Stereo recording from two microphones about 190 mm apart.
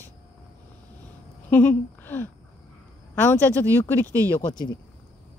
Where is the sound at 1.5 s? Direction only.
10° left (ahead or behind).